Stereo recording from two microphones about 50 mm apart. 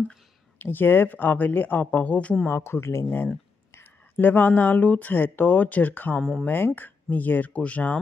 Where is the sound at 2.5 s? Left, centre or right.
Left.